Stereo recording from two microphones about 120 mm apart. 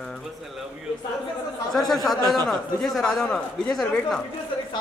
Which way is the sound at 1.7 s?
Centre (ahead or behind).